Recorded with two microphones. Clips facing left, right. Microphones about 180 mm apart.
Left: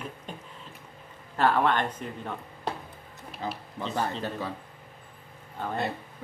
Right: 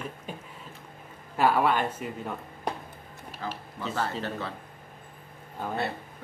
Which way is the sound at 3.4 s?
20° left (ahead or behind).